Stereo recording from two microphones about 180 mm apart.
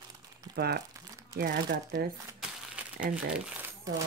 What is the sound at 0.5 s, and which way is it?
Speech, 60° right (ahead or behind).